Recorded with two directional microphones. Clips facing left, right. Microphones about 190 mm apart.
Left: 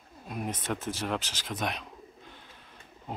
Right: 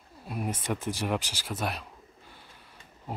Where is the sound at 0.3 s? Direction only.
5° right (ahead or behind).